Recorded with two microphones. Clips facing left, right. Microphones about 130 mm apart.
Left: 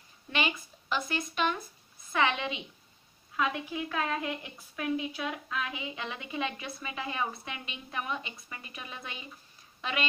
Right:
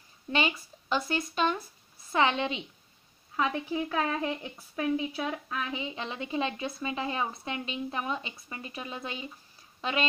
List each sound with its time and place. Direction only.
0.3 s a woman's voice: 30° right (ahead or behind)